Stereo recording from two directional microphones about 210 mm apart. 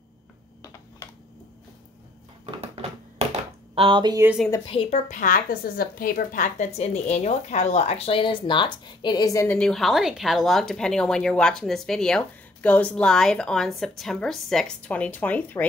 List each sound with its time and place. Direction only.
2.4 s a sound: 30° right (ahead or behind)
3.7 s speech: 25° right (ahead or behind)
4.6 s a woman's voice: 30° left (ahead or behind); by 15.6 s 10° left (ahead or behind)